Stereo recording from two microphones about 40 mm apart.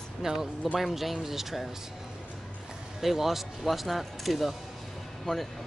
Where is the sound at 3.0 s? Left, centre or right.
Centre.